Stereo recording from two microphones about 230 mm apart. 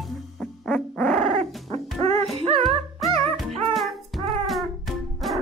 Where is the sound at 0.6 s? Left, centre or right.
Centre.